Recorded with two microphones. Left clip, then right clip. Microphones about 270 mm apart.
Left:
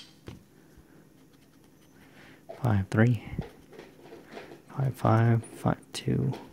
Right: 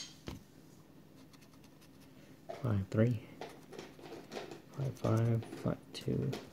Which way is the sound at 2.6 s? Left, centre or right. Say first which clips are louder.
Left 7 dB; left.